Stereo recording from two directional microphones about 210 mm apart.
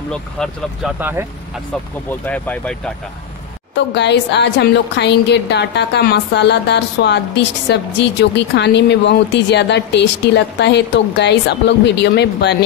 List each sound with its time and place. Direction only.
0.1 s speech: centre (ahead or behind)
0.9 s speech: 10° right (ahead or behind)
2.0 s speech: 5° left (ahead or behind)
3.7 s a woman's voice: 55° left (ahead or behind)